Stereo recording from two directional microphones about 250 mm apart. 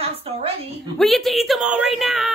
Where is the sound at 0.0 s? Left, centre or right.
Right.